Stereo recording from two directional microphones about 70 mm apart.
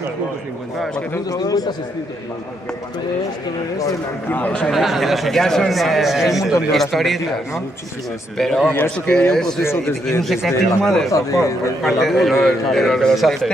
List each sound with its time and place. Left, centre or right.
1.3 s speech: left
4.6 s speech: centre
8.4 s speech: centre
8.6 s a man's voice: left
9.0 s a man's voice: centre
10.2 s speech: centre
11.1 s speech: left
11.8 s speech: centre